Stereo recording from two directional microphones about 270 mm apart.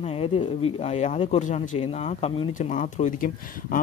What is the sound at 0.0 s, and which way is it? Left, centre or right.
Speech, left.